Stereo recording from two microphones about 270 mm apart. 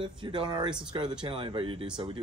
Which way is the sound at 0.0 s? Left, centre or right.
Centre.